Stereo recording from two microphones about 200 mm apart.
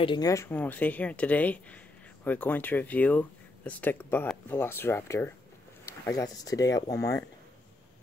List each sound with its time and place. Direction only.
0.0 s speech: 20° left (ahead or behind)